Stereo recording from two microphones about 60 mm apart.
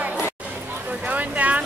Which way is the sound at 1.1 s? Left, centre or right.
Right.